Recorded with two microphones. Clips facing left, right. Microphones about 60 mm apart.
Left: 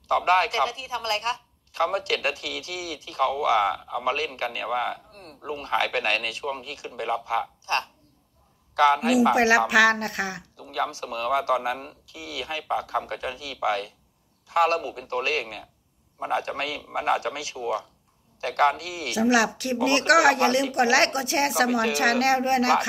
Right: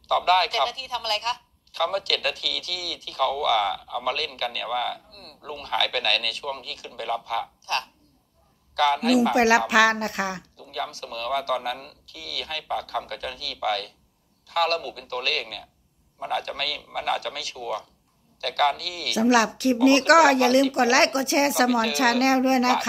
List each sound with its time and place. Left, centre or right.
0.1 s a man's voice: left
9.3 s speech: centre
10.6 s a sound: left
10.9 s a man's voice: left
19.1 s speech: centre